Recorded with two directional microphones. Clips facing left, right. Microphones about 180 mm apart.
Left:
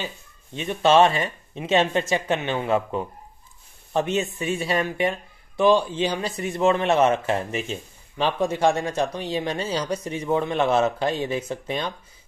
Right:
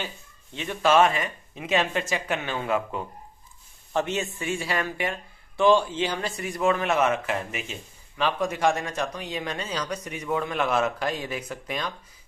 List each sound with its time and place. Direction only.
0.0 s speech: 15° left (ahead or behind)